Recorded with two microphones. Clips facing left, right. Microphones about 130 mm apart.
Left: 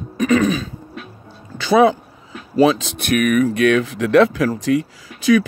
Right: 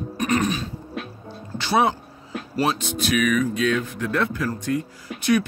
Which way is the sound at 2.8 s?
70° left (ahead or behind).